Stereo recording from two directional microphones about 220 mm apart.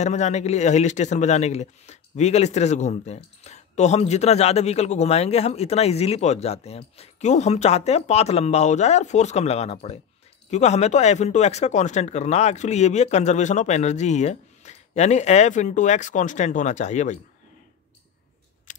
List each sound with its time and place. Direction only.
0.0 s a man's voice: 30° left (ahead or behind)
18.7 s scissors: 35° left (ahead or behind)